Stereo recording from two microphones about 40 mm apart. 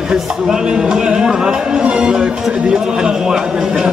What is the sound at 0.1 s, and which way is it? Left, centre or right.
A man's voice, centre.